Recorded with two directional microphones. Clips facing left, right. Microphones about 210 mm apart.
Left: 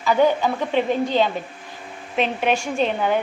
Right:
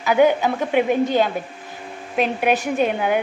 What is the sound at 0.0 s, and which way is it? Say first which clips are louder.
A woman's voice: right 2 dB; 15° right (ahead or behind).